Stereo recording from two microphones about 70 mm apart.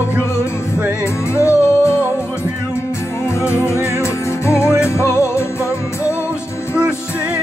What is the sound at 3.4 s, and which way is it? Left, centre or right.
Music, left.